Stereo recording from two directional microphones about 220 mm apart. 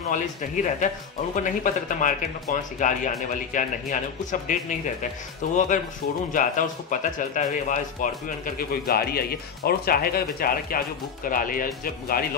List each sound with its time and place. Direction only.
0.1 s speech: 35° left (ahead or behind)